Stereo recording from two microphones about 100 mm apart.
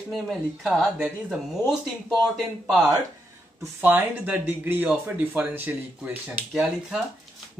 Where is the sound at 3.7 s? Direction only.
20° right (ahead or behind).